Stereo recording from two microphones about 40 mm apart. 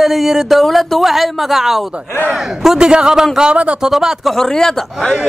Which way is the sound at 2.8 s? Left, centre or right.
Right.